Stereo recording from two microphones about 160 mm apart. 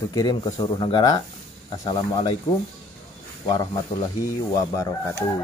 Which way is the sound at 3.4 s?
35° left (ahead or behind).